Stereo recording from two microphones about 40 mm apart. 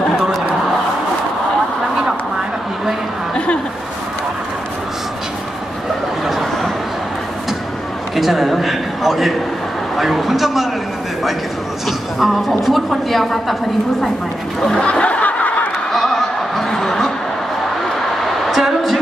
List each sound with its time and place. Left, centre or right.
8.2 s a man's voice: centre
12.2 s a woman's voice: centre
14.8 s snicker: left
15.9 s chuckle: centre
18.5 s a sound: centre